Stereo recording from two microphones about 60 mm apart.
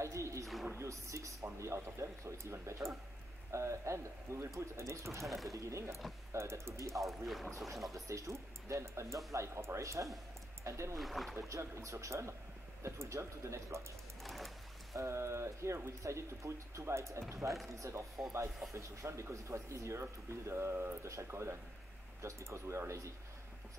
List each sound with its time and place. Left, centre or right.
0.0 s a sound: right
0.7 s speech: right
5.2 s speech: centre
5.5 s speech: right
7.6 s speech: centre
7.9 s speech: right
11.0 s speech: centre
11.3 s speech: right
14.2 s music: centre
15.0 s speech: right